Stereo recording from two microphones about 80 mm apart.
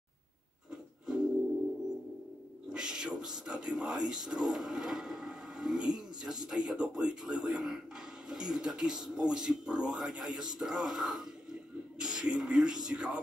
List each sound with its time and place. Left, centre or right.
0.7 s music: centre
2.7 s speech: centre